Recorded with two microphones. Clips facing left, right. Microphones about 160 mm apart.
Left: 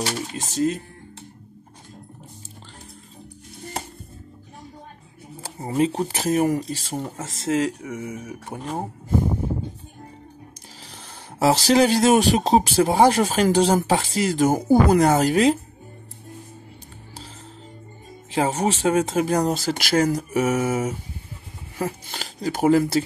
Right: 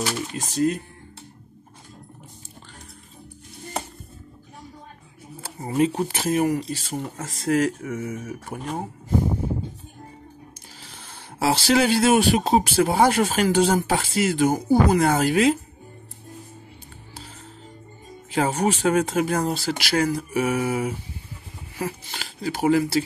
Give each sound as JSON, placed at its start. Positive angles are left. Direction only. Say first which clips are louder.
{"t": 0.0, "sound": "speech", "louder": "even", "side_deg": 30}
{"t": 5.6, "sound": "speech", "louder": "even", "side_deg": 30}
{"t": 10.9, "sound": "speech", "louder": "left 1 dB", "side_deg": 40}
{"t": 18.3, "sound": "speech", "louder": "even", "side_deg": 35}